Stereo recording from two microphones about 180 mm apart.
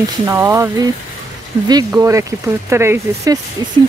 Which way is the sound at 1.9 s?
15° right (ahead or behind).